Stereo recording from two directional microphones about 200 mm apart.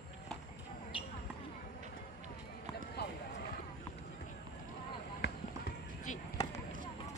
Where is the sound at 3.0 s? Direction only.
55° left (ahead or behind).